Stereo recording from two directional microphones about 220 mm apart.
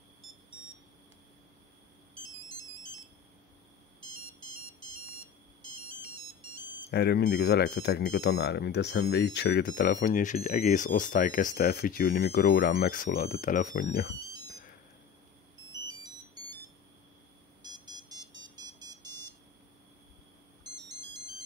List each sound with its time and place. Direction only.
5.8 s ringtone: 25° right (ahead or behind)
6.9 s speech: 45° left (ahead or behind)
14.2 s a sound: 15° right (ahead or behind)
17.6 s a sound: 20° right (ahead or behind)
18.8 s buzzer: 20° right (ahead or behind)
20.7 s ringtone: 20° right (ahead or behind)